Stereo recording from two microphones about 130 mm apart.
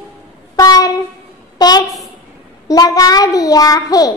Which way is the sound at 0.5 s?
30° left (ahead or behind).